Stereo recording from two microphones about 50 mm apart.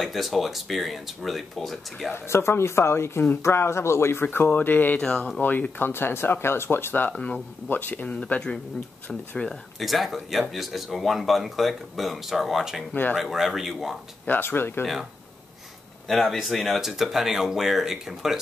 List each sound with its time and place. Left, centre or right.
0.0 s speech: centre
2.1 s speech: left
4.5 s speech: left
4.9 s speech: centre
5.4 s speech: left
8.1 s speech: centre
9.5 s speech: centre
14.2 s speech: left
16.1 s speech: centre